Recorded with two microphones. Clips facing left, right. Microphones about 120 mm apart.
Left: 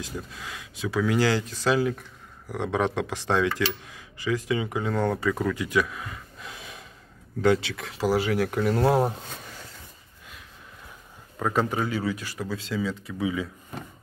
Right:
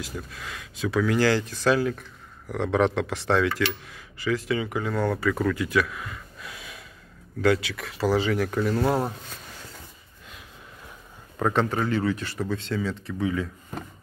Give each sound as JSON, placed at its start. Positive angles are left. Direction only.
{"t": 0.3, "sound": "speech", "side_deg": 15}
{"t": 8.1, "sound": "speech", "side_deg": 15}
{"t": 11.3, "sound": "speech", "side_deg": 0}